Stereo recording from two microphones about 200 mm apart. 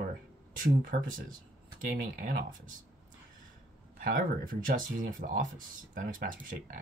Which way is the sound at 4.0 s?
45° right (ahead or behind).